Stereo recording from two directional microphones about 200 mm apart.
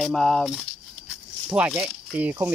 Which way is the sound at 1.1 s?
5° right (ahead or behind).